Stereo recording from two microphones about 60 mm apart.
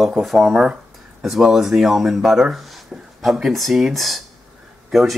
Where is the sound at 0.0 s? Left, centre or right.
Centre.